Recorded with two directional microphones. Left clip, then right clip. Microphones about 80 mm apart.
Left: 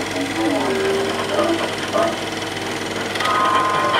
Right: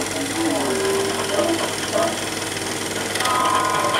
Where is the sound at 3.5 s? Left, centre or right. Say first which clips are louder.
Left 2 dB; centre.